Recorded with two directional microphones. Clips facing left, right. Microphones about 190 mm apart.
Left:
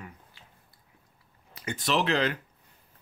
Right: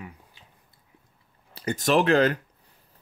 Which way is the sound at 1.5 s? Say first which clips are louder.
Right 6 dB; 35° right (ahead or behind).